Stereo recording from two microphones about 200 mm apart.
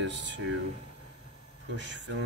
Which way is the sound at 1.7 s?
65° right (ahead or behind).